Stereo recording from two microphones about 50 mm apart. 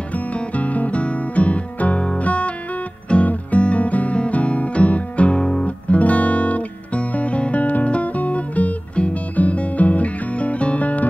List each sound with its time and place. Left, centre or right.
0.1 s music: left
3.1 s guitar: left